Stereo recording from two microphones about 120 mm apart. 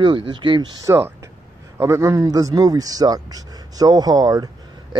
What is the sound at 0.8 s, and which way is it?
Speech, 25° right (ahead or behind).